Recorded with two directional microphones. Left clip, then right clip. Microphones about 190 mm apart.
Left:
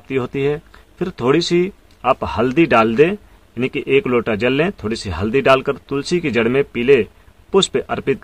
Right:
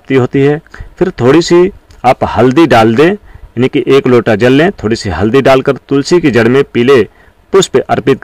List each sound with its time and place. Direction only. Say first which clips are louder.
0.1 s speech: right 10 dB; 35° right (ahead or behind)